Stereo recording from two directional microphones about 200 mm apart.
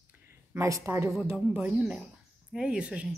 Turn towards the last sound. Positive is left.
turn(degrees=-5)  # may be behind; listen again after turning